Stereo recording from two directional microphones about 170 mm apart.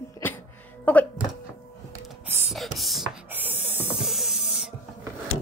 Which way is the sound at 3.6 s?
40° left (ahead or behind).